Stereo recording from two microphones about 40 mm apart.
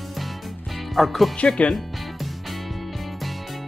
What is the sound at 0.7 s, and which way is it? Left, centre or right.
Music, centre.